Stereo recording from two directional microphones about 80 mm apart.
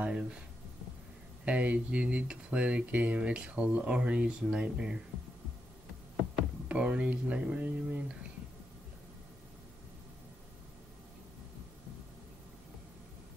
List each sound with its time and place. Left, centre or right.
0.0 s speech: centre
1.4 s speech: centre
6.7 s speech: centre